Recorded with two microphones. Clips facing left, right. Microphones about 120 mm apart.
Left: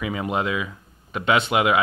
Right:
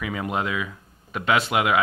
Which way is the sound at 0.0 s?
5° left (ahead or behind).